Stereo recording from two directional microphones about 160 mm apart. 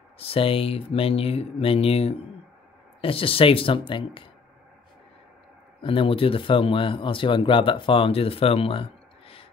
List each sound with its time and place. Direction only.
0.2 s speech: 35° left (ahead or behind)
5.8 s speech: 35° left (ahead or behind)